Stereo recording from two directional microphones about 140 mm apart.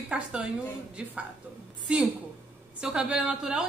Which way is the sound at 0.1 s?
5° right (ahead or behind).